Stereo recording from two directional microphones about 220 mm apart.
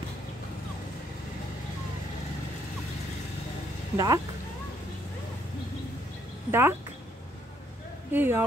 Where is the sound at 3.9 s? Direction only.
15° right (ahead or behind).